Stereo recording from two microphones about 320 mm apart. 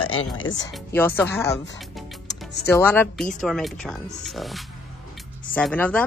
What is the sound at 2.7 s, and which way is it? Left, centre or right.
Speech, centre.